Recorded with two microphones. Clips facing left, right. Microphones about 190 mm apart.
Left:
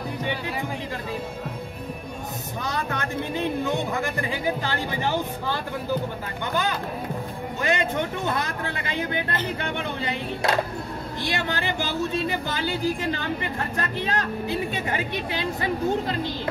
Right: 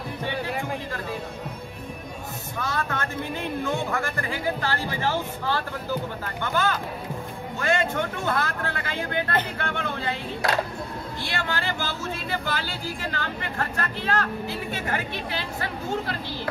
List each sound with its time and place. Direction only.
2.6 s music: 15° left (ahead or behind)
6.4 s speech: 15° left (ahead or behind)